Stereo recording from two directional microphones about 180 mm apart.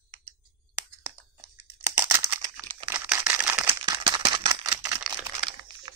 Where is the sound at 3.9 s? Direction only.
25° right (ahead or behind).